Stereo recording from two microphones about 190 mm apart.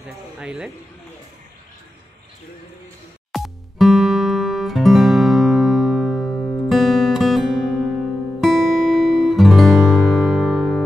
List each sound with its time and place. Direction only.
0.4 s speech: 5° right (ahead or behind)
3.3 s music: centre (ahead or behind)